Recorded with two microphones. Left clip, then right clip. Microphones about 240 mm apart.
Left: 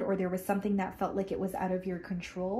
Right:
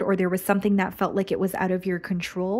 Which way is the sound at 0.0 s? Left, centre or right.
Right.